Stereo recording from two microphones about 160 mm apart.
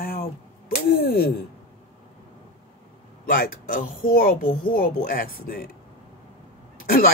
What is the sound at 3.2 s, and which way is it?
Speech, 65° left (ahead or behind).